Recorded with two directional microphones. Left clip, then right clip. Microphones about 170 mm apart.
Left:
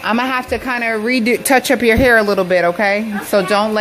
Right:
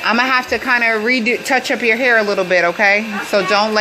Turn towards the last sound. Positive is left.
turn(degrees=15)  # may be behind; listen again after turning